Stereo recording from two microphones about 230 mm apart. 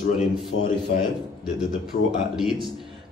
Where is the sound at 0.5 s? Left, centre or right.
Left.